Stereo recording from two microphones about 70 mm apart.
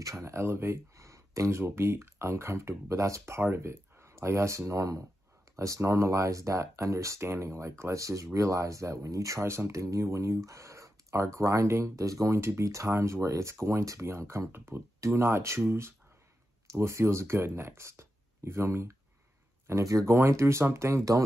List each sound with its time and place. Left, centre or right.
0.0 s speech: right